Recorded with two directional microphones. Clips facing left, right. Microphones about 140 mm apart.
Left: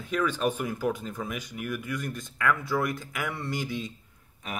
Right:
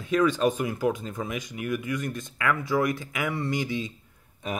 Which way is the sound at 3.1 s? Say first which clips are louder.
Right 4 dB; 15° right (ahead or behind).